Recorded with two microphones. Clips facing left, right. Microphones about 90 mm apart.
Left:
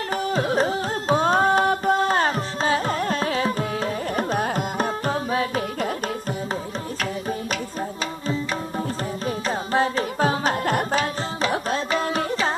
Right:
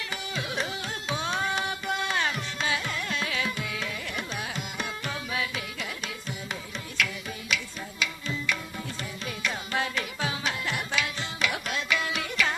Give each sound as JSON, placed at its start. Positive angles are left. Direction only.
{"t": 0.1, "sound": "carnatic music", "side_deg": 40}
{"t": 7.5, "sound": "music", "side_deg": 40}